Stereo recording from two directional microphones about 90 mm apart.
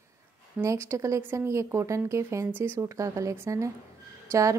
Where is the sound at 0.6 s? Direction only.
30° right (ahead or behind).